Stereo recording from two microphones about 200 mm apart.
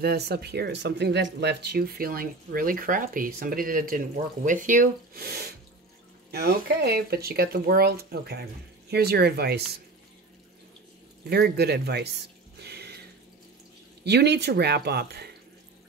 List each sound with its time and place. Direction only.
0.0 s speech: 55° right (ahead or behind)
11.2 s speech: 55° right (ahead or behind)
12.6 s water: 55° right (ahead or behind)
14.0 s speech: 55° right (ahead or behind)